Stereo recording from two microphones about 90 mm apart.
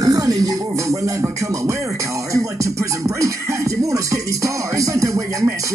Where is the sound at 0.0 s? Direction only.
40° right (ahead or behind).